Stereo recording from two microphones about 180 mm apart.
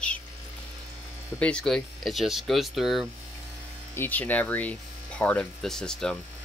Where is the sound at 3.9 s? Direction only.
10° left (ahead or behind).